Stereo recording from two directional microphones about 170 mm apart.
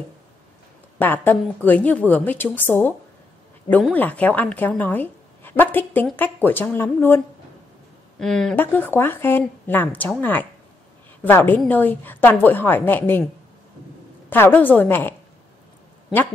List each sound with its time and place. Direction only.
0.9 s speech: 10° left (ahead or behind)
3.9 s speech: 10° left (ahead or behind)
8.2 s speech: centre (ahead or behind)
14.3 s speech: 10° left (ahead or behind)